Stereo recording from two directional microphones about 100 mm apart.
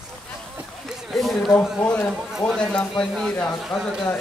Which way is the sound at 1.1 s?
Centre (ahead or behind).